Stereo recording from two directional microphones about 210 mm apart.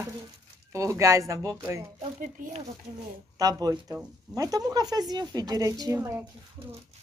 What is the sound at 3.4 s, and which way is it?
A woman's voice, 15° right (ahead or behind).